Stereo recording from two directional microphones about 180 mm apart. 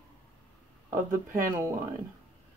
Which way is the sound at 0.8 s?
15° right (ahead or behind).